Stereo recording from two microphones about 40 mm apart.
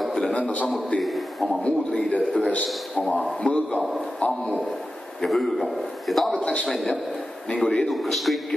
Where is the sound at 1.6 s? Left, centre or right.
Left.